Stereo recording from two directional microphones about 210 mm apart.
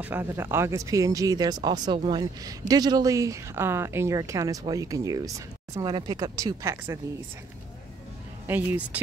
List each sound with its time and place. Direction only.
0.0 s speech: 10° right (ahead or behind)
8.5 s speech: 10° right (ahead or behind)